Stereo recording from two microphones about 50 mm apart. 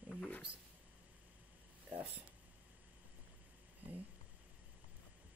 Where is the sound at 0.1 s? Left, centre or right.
Left.